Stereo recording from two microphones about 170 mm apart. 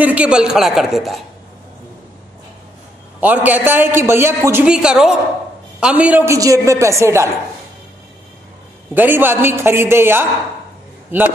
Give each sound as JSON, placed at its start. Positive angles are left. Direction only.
{"t": 0.0, "sound": "a woman's voice", "side_deg": -10}
{"t": 3.2, "sound": "a man's voice", "side_deg": -10}
{"t": 8.9, "sound": "a man's voice", "side_deg": -10}